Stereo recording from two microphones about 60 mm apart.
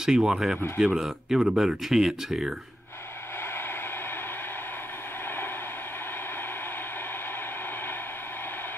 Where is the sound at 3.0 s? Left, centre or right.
Left.